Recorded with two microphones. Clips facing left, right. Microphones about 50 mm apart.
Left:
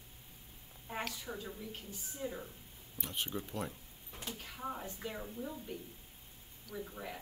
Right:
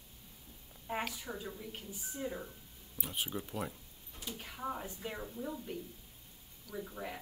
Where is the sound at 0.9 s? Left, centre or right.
Centre.